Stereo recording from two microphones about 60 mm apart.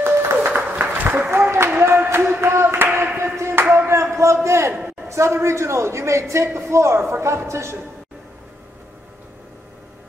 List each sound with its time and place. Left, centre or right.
0.0 s applause: right
0.5 s applause: right
1.5 s a sound: right
5.0 s speech: right